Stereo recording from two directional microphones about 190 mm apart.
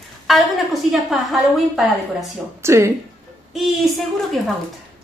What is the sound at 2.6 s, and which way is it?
Speech, 15° right (ahead or behind).